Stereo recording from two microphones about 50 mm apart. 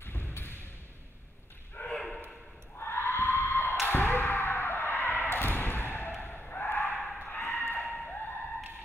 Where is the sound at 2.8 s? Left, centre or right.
Left.